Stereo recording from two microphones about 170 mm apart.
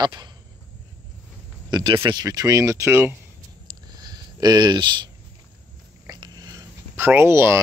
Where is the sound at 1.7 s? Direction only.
30° right (ahead or behind).